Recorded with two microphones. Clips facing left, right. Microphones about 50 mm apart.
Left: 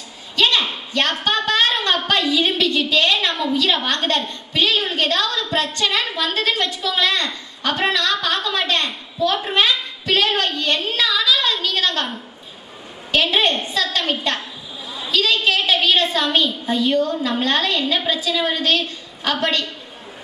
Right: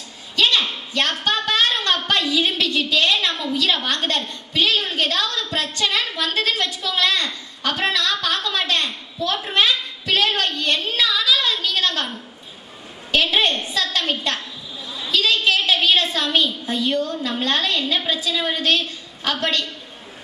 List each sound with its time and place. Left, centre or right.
0.4 s a woman's voice: centre